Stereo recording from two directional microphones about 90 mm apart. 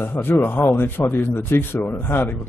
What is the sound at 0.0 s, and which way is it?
A man's voice, 20° left (ahead or behind).